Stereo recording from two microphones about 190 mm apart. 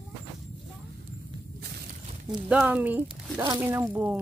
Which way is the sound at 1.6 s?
60° right (ahead or behind).